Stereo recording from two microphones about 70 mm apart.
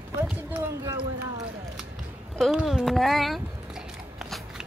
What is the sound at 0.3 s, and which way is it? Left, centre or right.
Speech, right.